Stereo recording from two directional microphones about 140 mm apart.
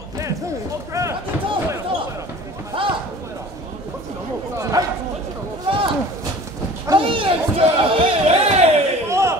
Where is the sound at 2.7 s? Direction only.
40° right (ahead or behind).